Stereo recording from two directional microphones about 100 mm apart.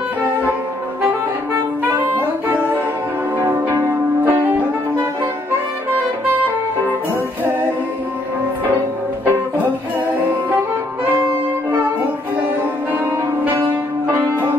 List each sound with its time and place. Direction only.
2.0 s saxophone: 20° right (ahead or behind)
3.3 s music: 30° right (ahead or behind)
14.0 s music: 20° right (ahead or behind)